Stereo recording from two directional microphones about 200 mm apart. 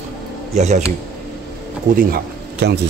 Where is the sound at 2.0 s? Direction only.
50° right (ahead or behind).